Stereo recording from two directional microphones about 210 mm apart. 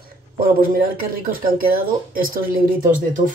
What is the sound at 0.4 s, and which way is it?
A man's voice, 45° right (ahead or behind).